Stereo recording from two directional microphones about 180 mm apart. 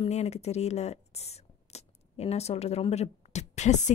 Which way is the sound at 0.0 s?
35° left (ahead or behind).